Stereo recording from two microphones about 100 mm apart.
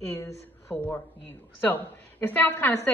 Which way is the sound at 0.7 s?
20° left (ahead or behind).